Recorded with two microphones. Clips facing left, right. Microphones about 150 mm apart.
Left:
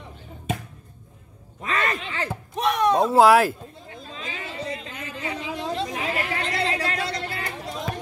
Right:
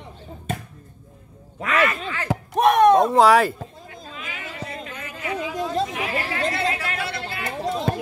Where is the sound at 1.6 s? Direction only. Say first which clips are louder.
Right 5 dB; 90° right.